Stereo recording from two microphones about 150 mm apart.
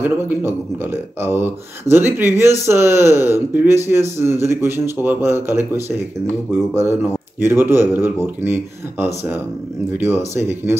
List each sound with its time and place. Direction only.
0.0 s speech: 15° right (ahead or behind)
7.0 s speech: 15° right (ahead or behind)